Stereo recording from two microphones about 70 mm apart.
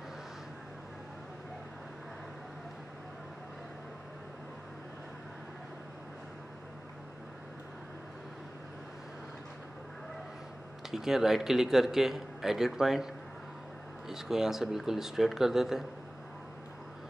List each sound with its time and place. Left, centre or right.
10.9 s speech: centre